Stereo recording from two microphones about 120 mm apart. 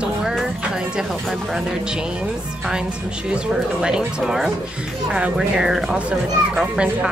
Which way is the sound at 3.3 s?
5° right (ahead or behind).